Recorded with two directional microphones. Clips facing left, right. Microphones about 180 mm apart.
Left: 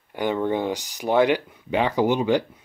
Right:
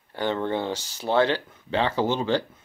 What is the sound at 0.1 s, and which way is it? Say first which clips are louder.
Speech: left 3 dB; 10° left (ahead or behind).